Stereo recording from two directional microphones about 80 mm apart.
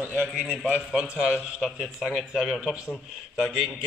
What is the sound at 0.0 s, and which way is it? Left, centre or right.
A man's voice, centre.